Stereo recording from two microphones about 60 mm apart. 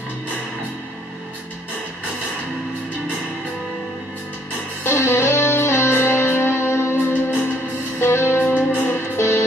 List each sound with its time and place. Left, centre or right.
4.8 s music: left